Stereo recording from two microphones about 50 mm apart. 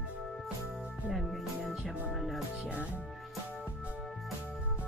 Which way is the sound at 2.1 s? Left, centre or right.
Centre.